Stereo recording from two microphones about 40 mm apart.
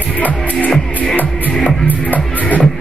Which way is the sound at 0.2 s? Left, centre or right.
Left.